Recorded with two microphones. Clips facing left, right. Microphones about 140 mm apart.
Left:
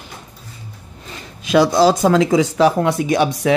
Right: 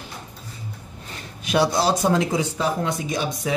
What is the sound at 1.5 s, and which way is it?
Speech, 90° left.